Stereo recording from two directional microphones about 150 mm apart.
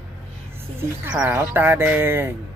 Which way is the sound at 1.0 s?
10° right (ahead or behind).